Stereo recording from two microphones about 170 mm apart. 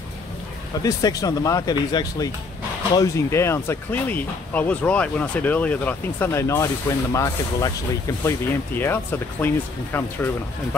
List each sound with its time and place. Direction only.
0.8 s speech: 20° left (ahead or behind)